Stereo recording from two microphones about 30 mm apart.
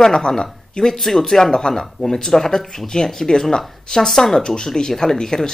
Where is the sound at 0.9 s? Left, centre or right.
Centre.